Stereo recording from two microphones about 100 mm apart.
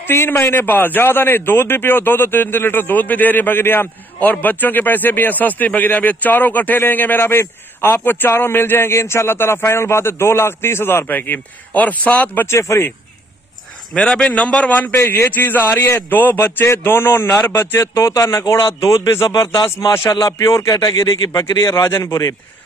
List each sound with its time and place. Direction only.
0.0 s a man's voice: 25° left (ahead or behind)
13.9 s a man's voice: 10° left (ahead or behind); by 22.3 s 30° left (ahead or behind)